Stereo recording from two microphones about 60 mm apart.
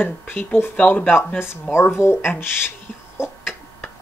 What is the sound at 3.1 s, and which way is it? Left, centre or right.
Chicken, left.